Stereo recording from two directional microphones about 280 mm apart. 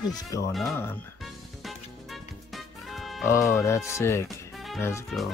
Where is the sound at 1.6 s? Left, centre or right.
Centre.